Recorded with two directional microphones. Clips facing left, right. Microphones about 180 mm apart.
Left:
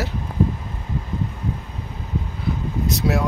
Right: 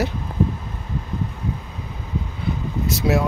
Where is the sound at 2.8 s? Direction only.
5° right (ahead or behind).